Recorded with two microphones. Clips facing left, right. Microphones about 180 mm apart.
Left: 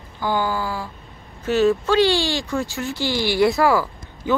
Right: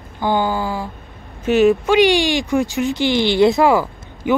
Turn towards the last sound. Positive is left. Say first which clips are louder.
# right 4 dB
turn(degrees=-20)  # may be behind; listen again after turning